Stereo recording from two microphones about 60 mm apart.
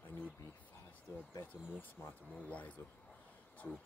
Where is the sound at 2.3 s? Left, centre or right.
Left.